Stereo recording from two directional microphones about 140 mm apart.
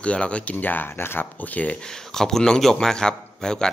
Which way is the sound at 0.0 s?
10° left (ahead or behind).